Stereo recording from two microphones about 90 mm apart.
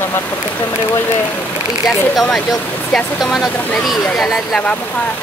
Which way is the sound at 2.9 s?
Centre (ahead or behind).